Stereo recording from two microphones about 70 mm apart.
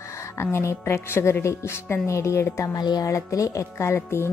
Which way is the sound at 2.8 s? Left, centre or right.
Left.